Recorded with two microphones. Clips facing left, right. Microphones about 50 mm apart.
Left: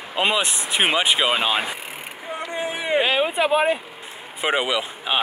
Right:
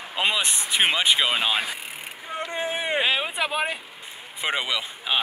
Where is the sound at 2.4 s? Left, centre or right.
Right.